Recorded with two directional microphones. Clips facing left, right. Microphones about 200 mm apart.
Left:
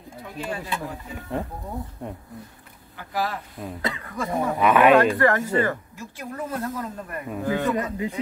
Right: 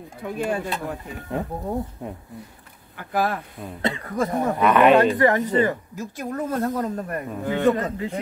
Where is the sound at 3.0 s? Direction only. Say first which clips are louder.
Right 4 dB; 55° right (ahead or behind).